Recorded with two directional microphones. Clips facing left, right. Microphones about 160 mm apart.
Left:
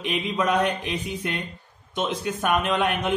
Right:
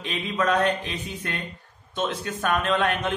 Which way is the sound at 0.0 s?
15° left (ahead or behind).